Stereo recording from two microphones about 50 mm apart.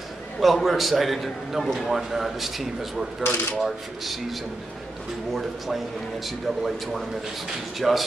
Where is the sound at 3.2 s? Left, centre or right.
Left.